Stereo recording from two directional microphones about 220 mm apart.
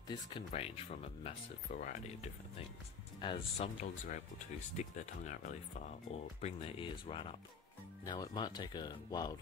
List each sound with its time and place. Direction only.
0.5 s speech: 25° left (ahead or behind)
3.2 s speech: 25° left (ahead or behind)